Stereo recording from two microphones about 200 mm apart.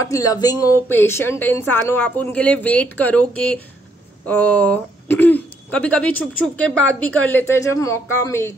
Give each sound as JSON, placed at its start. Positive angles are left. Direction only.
{"t": 0.0, "sound": "speech", "side_deg": 15}